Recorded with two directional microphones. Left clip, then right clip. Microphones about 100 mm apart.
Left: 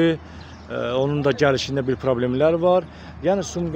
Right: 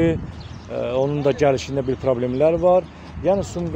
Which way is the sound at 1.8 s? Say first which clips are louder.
Right 1 dB; 35° left (ahead or behind).